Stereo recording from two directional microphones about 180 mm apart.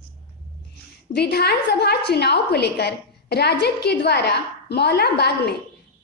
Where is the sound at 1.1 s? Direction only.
65° left (ahead or behind).